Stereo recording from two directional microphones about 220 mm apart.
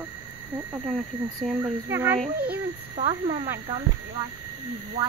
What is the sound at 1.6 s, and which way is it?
Speech, 10° right (ahead or behind).